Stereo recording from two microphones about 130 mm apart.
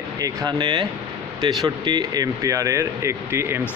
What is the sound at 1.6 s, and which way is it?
Speech, 30° right (ahead or behind).